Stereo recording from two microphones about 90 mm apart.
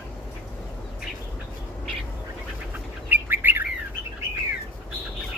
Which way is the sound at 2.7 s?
20° right (ahead or behind).